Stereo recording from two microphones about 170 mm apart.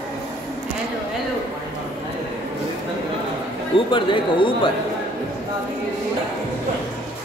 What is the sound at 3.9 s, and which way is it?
Speech, 30° left (ahead or behind).